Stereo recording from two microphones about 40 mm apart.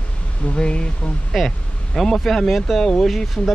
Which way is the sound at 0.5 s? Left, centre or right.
Left.